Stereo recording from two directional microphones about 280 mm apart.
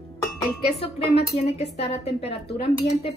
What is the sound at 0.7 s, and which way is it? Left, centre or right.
A woman's voice, left.